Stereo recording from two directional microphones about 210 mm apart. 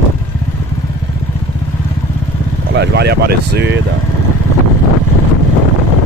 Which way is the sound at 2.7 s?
50° right (ahead or behind).